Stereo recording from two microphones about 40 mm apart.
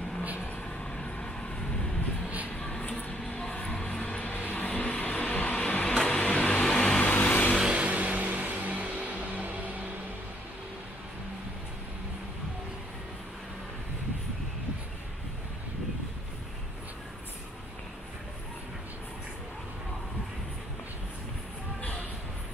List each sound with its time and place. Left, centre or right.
0.9 s vehicle: left
3.1 s a sound: left
3.4 s music: left
4.0 s vehicle: left
4.3 s vehicle: left
4.6 s vehicle: left
7.0 s a sound: left
7.6 s music: right